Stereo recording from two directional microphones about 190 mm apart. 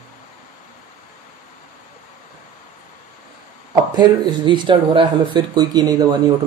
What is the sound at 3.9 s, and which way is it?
Speech, 25° right (ahead or behind).